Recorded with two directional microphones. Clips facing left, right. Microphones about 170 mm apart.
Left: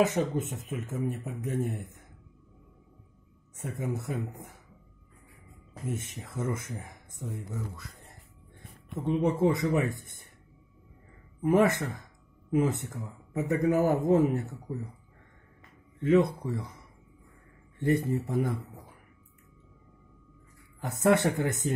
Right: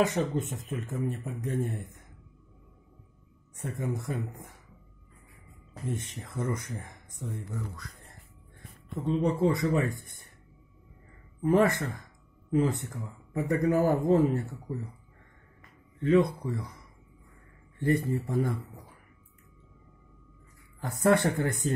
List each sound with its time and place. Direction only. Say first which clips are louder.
0.0 s speech: left 1 dB; 5° left (ahead or behind)
0.4 s speech: even; 20° left (ahead or behind)
0.7 s speech: even; 5° left (ahead or behind)
3.6 s a man's voice: even; 5° left (ahead or behind)
5.9 s a man's voice: even; 5° left (ahead or behind)
8.9 s speech: even; 20° left (ahead or behind)
11.4 s a man's voice: even; 20° left (ahead or behind)
16.0 s speech: even; 20° left (ahead or behind)
16.4 s a man's voice: even; 10° left (ahead or behind)
18.0 s a man's voice: even; 20° left (ahead or behind)
21.0 s speech: even; 20° left (ahead or behind)